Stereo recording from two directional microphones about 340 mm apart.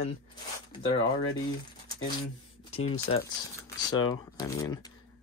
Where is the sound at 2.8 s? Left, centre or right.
Left.